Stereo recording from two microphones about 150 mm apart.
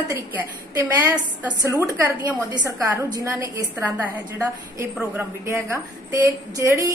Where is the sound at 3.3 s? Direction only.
10° right (ahead or behind).